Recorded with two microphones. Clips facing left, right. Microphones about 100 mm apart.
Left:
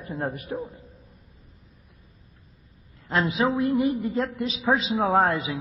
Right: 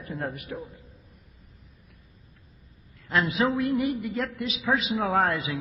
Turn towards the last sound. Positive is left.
turn(degrees=25)  # may be behind; listen again after turning